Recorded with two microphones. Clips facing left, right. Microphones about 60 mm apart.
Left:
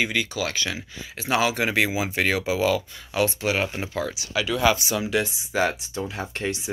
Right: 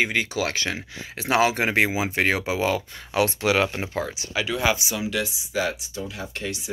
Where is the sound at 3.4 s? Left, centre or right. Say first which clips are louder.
Right 3 dB; right.